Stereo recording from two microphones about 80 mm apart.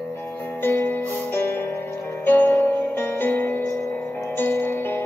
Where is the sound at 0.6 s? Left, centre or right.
Left.